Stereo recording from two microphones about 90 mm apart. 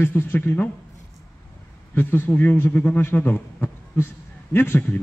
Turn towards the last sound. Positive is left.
turn(degrees=25)  # may be behind; listen again after turning